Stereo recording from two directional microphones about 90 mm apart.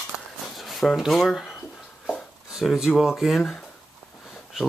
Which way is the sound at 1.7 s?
10° left (ahead or behind).